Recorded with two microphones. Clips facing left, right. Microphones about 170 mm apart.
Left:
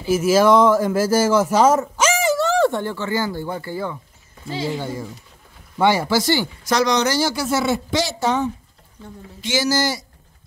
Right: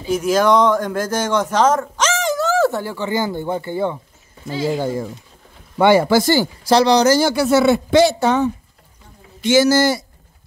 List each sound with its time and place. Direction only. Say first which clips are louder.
0.1 s a man's voice: left 1 dB; 5° left (ahead or behind); by 4.0 s 25° right (ahead or behind)
5.8 s speech: right 5 dB; 55° right (ahead or behind); by 7.2 s 35° right (ahead or behind)
7.2 s speech: right 6 dB; 60° right (ahead or behind)